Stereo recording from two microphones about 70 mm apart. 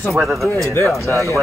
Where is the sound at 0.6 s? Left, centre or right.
Left.